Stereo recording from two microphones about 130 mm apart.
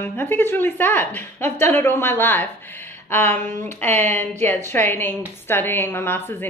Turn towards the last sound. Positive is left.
turn(degrees=15)  # may be behind; listen again after turning